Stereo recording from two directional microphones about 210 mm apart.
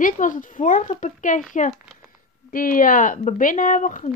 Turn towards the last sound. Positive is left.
turn(degrees=40)  # may be behind; listen again after turning